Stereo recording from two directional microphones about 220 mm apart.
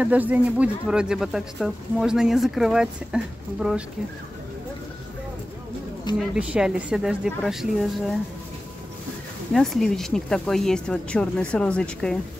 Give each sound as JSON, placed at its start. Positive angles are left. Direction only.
{"t": 0.0, "sound": "speech", "side_deg": -5}
{"t": 6.1, "sound": "speech", "side_deg": -5}
{"t": 9.5, "sound": "speech", "side_deg": 0}